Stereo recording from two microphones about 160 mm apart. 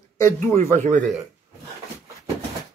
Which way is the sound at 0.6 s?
50° right (ahead or behind).